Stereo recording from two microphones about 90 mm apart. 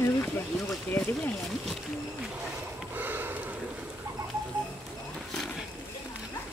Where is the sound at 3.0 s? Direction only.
20° right (ahead or behind).